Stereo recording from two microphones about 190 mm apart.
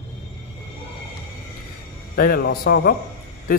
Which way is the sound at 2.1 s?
50° left (ahead or behind).